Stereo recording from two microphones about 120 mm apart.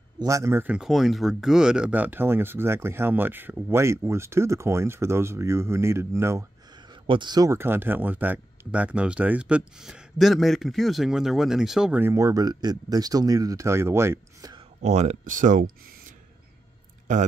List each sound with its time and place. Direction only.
0.2 s speech: 25° right (ahead or behind)
0.7 s speech: 5° right (ahead or behind); by 6.4 s 20° right (ahead or behind)
7.1 s speech: 40° right (ahead or behind)
7.5 s speech: 20° right (ahead or behind); by 11.9 s 5° right (ahead or behind)
11.9 s speech: 20° right (ahead or behind)
14.8 s speech: 70° right (ahead or behind); by 15.6 s 90° right
17.1 s speech: 90° right